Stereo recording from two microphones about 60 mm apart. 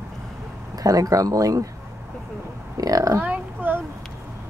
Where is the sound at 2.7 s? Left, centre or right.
Right.